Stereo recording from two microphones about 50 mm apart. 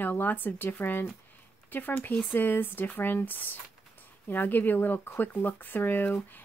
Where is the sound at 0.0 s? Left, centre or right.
Left.